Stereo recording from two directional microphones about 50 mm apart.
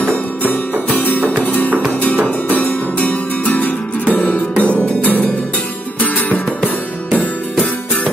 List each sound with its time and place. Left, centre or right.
1.4 s music: left
5.9 s music: left